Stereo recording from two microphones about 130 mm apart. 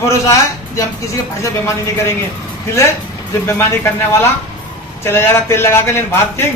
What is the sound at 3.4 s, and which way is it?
A man's voice, 20° left (ahead or behind).